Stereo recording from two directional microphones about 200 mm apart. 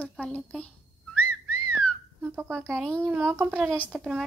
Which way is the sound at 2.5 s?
5° left (ahead or behind).